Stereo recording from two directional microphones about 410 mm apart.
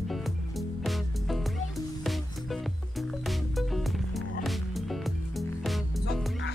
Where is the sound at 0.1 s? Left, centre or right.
Centre.